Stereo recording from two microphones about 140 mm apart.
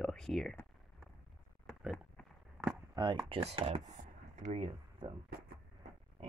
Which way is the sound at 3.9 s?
55° right (ahead or behind).